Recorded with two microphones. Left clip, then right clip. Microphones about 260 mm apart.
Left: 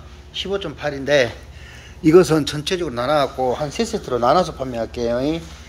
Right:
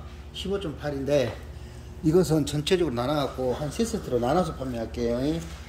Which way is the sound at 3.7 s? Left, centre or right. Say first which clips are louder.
Left 5 dB; centre.